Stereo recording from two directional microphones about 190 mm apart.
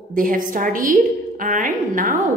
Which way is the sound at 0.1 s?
45° right (ahead or behind).